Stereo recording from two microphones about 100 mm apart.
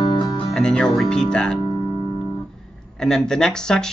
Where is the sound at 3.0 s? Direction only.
5° left (ahead or behind).